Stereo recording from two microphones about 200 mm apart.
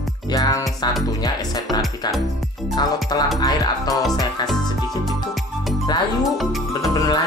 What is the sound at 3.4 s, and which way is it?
Speech, 20° left (ahead or behind).